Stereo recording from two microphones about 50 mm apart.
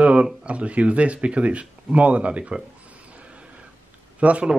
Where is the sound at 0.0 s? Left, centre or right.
Right.